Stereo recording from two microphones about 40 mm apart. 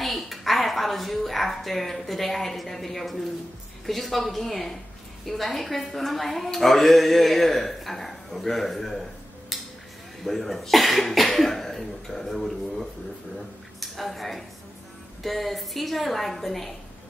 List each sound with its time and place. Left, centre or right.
0.0 s a woman's voice: centre
9.5 s a sound: centre
10.2 s a woman's voice: centre